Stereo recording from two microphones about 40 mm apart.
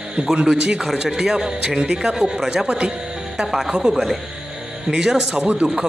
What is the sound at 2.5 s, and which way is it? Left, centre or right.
Speech, right.